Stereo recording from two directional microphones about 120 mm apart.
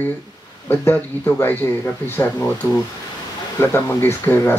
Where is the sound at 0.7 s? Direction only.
15° left (ahead or behind).